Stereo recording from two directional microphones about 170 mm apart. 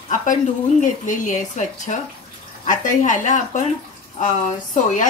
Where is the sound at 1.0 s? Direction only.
50° left (ahead or behind).